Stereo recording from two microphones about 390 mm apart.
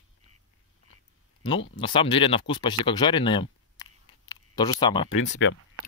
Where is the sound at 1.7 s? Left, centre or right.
Centre.